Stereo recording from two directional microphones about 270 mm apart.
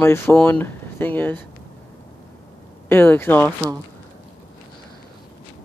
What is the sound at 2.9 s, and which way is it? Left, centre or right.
Speech, centre.